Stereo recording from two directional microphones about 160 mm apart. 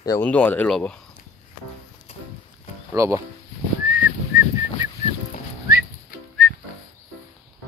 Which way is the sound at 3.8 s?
15° right (ahead or behind).